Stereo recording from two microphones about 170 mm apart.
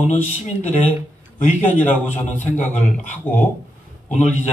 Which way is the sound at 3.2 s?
10° left (ahead or behind).